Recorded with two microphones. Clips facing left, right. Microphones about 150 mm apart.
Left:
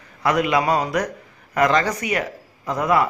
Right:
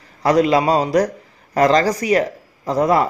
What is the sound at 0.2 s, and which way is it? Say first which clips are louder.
A man's voice: right 5 dB; 35° right (ahead or behind).